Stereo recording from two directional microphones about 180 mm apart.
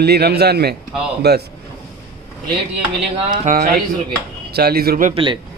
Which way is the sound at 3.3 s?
50° right (ahead or behind).